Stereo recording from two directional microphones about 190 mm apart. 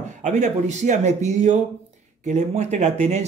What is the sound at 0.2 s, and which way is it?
Speech, 40° right (ahead or behind).